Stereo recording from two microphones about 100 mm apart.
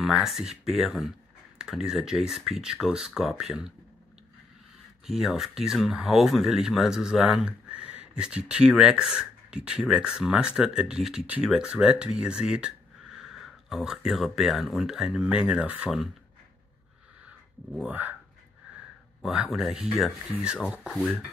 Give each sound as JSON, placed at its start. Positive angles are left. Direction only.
{"t": 0.0, "sound": "speech", "side_deg": 0}
{"t": 5.0, "sound": "speech", "side_deg": -5}
{"t": 17.8, "sound": "speech", "side_deg": -15}
{"t": 19.2, "sound": "speech", "side_deg": -5}